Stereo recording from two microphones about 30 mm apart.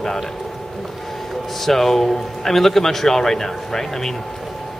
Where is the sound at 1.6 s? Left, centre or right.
Centre.